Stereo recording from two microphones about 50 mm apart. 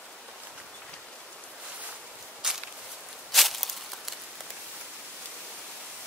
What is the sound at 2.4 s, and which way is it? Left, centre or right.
Walk, centre.